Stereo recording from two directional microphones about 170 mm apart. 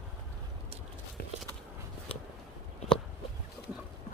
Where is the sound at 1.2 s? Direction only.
60° left (ahead or behind).